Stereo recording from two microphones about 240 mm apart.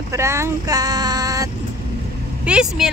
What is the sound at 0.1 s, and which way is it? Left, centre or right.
Speech, centre.